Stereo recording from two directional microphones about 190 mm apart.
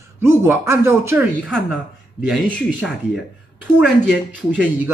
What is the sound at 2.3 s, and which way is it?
Speech, 5° left (ahead or behind).